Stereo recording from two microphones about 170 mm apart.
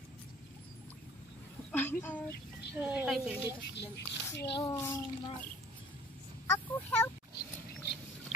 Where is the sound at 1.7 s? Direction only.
10° left (ahead or behind).